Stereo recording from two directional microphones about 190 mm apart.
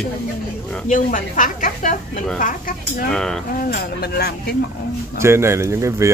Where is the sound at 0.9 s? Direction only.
45° left (ahead or behind).